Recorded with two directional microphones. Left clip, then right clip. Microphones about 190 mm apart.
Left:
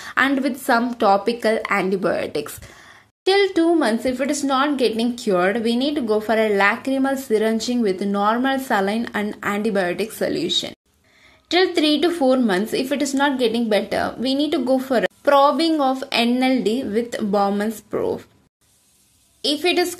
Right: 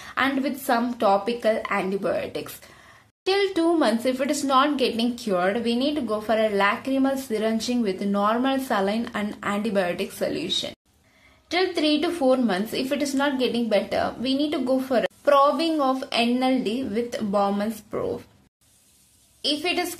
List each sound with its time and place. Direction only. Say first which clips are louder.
0.0 s a woman's voice: left 5 dB; 25° left (ahead or behind)
3.3 s a woman's voice: left 5 dB; 15° left (ahead or behind)
19.4 s a woman's voice: left 5 dB; 20° left (ahead or behind)